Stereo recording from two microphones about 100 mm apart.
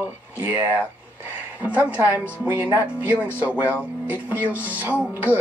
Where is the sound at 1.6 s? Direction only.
15° right (ahead or behind).